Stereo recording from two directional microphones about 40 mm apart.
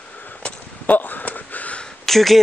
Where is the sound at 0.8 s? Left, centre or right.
Left.